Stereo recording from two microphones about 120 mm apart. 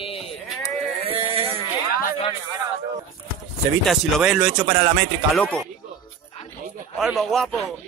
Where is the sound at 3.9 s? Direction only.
Centre (ahead or behind).